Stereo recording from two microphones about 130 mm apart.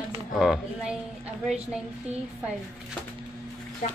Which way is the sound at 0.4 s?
5° right (ahead or behind).